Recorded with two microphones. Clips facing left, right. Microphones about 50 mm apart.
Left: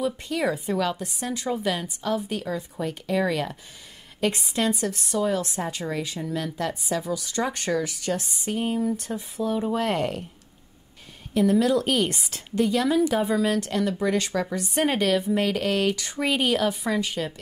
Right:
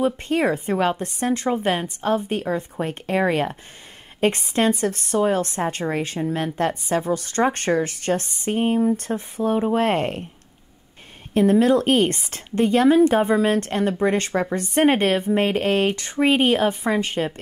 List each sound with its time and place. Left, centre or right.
0.0 s a woman's voice: right
11.3 s a woman's voice: right